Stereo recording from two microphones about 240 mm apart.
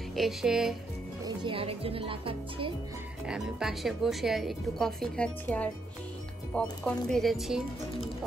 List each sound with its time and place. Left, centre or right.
0.1 s a woman's voice: centre
1.2 s speech: right
3.3 s a woman's voice: centre